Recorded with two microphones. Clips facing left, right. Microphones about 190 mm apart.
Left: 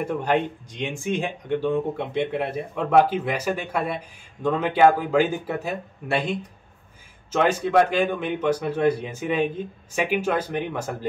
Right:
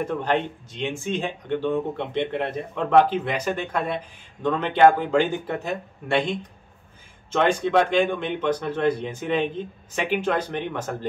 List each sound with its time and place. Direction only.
0.0 s speech: 15° left (ahead or behind)
7.3 s speech: 5° left (ahead or behind)